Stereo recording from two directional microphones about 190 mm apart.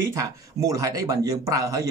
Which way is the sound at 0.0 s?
15° right (ahead or behind).